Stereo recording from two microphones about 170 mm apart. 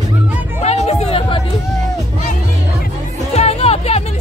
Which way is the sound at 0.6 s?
40° left (ahead or behind).